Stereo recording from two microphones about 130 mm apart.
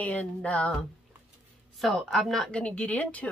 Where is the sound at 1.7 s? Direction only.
Centre (ahead or behind).